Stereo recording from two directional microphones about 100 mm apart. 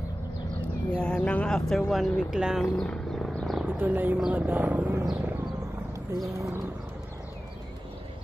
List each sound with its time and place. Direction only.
0.9 s speech: 10° left (ahead or behind)
2.6 s a sound: 10° left (ahead or behind)
3.6 s speech: 20° right (ahead or behind)
6.1 s speech: 30° right (ahead or behind)